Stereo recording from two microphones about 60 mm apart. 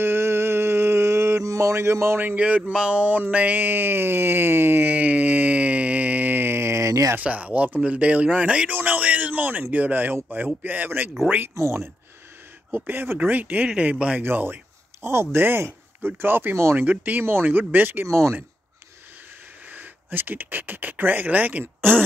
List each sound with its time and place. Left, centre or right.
0.0 s mantra: right
1.4 s mantra: right
2.1 s speech: right
2.7 s a sound: centre
3.0 s speech: right
4.8 s a sound: right
7.2 s speech: right
8.7 s a sound: right
10.3 s speech: right
11.5 s speech: right
12.7 s speech: right
14.2 s speech: right
16.7 s speech: right
19.7 s speech: right